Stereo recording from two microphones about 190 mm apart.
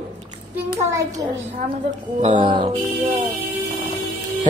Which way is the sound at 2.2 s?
30° right (ahead or behind).